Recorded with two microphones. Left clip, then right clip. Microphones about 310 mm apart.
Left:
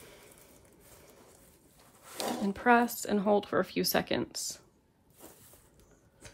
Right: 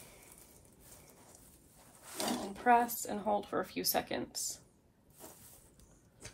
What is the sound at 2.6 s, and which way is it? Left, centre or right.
Speech, left.